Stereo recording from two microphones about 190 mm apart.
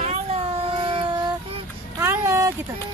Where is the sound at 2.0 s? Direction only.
15° right (ahead or behind).